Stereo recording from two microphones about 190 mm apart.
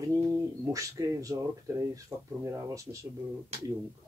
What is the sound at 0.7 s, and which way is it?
Speech, 15° right (ahead or behind).